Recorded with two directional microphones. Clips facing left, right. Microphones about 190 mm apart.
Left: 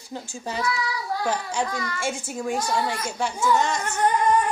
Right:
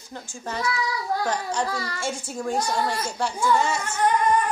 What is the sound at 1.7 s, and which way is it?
Speech, 30° right (ahead or behind).